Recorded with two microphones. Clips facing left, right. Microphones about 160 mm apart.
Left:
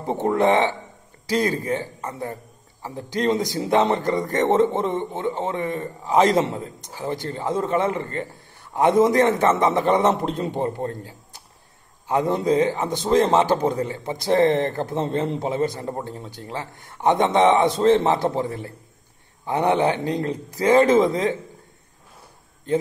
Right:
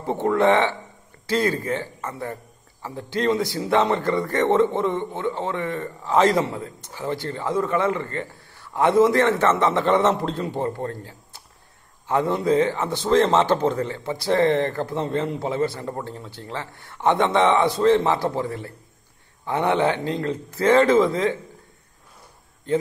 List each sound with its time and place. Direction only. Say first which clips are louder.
0.0 s a man's voice: even; 20° left (ahead or behind)
22.7 s a man's voice: even; 20° left (ahead or behind)